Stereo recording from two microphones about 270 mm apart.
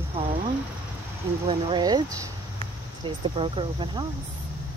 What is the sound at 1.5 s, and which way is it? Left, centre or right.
Speech, centre.